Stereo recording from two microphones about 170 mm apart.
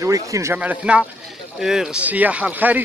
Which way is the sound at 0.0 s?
20° right (ahead or behind).